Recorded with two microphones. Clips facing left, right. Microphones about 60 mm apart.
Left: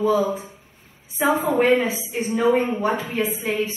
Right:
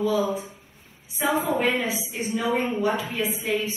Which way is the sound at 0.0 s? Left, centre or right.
Left.